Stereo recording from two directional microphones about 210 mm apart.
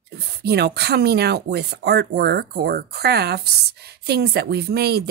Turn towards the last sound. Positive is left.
turn(degrees=-50)  # may be behind; listen again after turning